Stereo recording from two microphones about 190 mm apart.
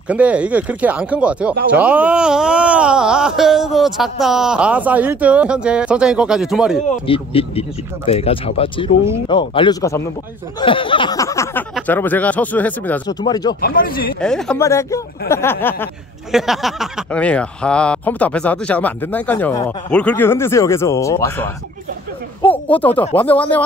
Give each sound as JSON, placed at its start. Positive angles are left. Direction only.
{"t": 0.1, "sound": "speech", "side_deg": -5}
{"t": 7.1, "sound": "a man's voice", "side_deg": 30}
{"t": 13.2, "sound": "speech", "side_deg": 20}
{"t": 13.6, "sound": "speech", "side_deg": 50}
{"t": 14.2, "sound": "speech", "side_deg": 5}
{"t": 14.6, "sound": "a man's voice", "side_deg": 15}
{"t": 16.3, "sound": "a man's voice", "side_deg": 0}
{"t": 22.5, "sound": "a man's voice", "side_deg": 10}